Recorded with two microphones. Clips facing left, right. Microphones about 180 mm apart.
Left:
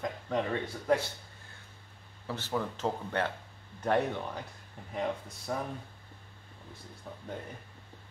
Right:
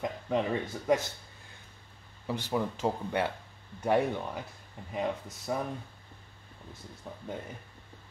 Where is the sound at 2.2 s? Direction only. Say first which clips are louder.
Right 3 dB; 15° right (ahead or behind).